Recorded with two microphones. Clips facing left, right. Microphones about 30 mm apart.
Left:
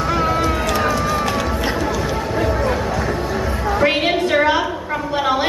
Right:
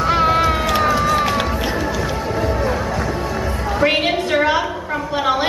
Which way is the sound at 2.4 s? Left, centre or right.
Centre.